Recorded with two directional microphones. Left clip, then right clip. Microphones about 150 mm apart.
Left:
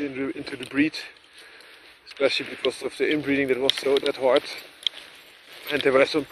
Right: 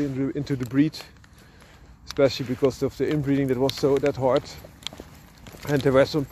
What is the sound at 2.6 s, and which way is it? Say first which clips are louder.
Speech: right 8 dB; 40° right (ahead or behind).